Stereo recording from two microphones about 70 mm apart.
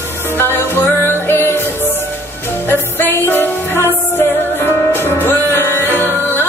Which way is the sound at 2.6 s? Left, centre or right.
Left.